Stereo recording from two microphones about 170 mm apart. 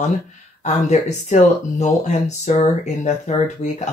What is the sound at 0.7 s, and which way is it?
Speech, 40° left (ahead or behind).